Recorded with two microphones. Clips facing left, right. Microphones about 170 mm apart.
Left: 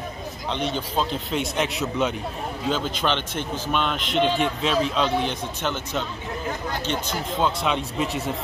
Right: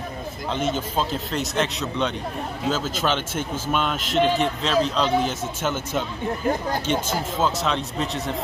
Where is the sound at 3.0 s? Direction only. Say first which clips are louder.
Right 1 dB; 5° right (ahead or behind).